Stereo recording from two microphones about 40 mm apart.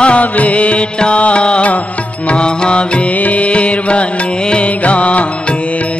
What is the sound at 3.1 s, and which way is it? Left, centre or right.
Music, left.